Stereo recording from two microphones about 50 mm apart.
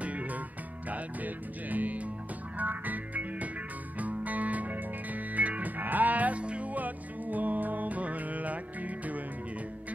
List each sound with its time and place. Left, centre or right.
0.0 s music: right
0.8 s speech: right
2.6 s music: right